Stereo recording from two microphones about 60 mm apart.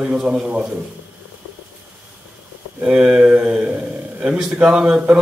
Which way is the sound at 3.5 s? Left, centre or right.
Right.